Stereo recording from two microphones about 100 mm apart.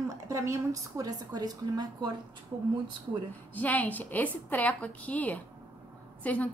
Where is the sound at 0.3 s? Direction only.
30° right (ahead or behind).